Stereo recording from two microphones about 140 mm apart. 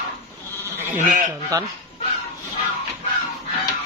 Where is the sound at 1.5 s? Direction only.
20° right (ahead or behind).